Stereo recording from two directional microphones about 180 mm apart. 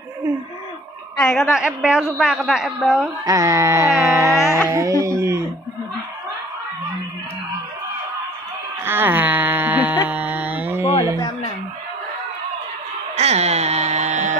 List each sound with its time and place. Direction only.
1.1 s a man's voice: 5° left (ahead or behind)
3.3 s music: 20° right (ahead or behind)
8.8 s a sound: 10° right (ahead or behind)
13.1 s music: 35° right (ahead or behind)